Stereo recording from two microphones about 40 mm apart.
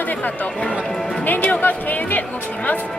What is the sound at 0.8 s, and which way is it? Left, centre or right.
Music, centre.